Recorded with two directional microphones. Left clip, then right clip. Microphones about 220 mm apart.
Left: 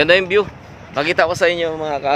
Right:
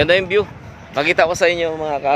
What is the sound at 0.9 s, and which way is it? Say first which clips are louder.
Speech: right 1 dB; 10° right (ahead or behind).